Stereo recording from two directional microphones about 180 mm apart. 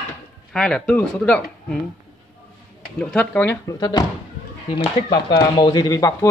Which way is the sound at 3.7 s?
20° left (ahead or behind).